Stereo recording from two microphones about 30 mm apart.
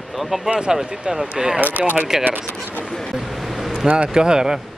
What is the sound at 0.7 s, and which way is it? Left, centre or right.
Speech, right.